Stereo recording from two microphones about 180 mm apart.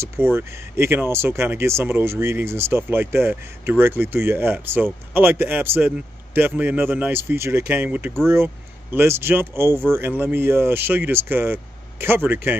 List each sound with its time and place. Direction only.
0.0 s speech: 15° right (ahead or behind)